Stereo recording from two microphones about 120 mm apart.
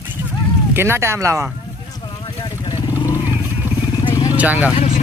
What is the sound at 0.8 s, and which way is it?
Speech, 20° right (ahead or behind).